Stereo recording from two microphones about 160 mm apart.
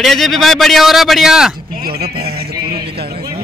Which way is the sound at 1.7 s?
70° right (ahead or behind).